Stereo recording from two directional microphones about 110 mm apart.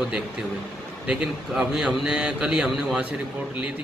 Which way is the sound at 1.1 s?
5° right (ahead or behind).